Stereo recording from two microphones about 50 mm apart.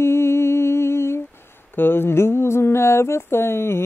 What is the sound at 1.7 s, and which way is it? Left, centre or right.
Mantra, left.